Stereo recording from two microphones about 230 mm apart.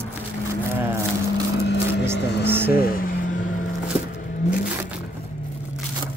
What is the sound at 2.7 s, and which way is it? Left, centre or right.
Vehicle, left.